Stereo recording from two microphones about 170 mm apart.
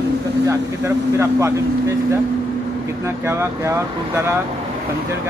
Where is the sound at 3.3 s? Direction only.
15° right (ahead or behind).